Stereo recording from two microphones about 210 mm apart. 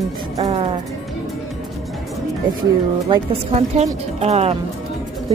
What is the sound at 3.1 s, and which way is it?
Speech, 30° right (ahead or behind).